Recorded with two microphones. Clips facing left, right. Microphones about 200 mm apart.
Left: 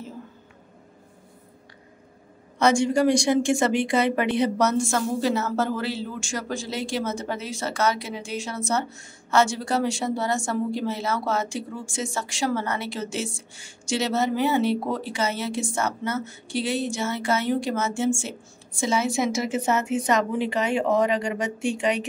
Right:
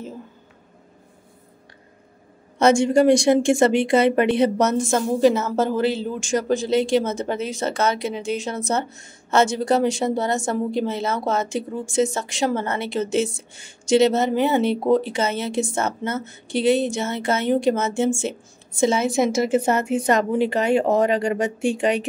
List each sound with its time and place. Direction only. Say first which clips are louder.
2.6 s a woman's voice: right 4 dB; 25° right (ahead or behind)
19.5 s speech: right 4 dB; 55° right (ahead or behind)
20.1 s speech: right 6 dB; 40° right (ahead or behind)